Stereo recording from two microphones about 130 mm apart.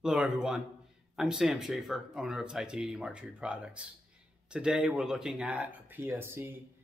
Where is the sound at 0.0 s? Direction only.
5° right (ahead or behind).